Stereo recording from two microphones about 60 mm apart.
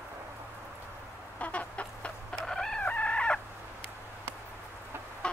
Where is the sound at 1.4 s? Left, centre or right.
Left.